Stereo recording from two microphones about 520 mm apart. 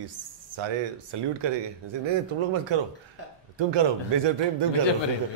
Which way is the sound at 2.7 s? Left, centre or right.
Right.